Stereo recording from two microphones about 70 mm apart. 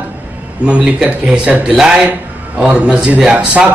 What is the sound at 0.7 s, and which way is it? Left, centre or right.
Speech, centre.